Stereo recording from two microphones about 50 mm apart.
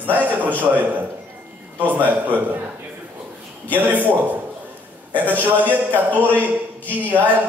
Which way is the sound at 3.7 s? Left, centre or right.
Right.